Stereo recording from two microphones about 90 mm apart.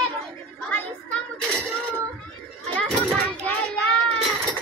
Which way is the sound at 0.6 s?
20° left (ahead or behind).